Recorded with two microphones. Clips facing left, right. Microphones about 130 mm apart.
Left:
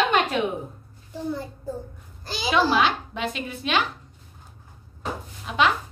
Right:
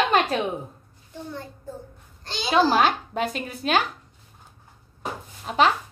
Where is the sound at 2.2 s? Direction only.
5° left (ahead or behind).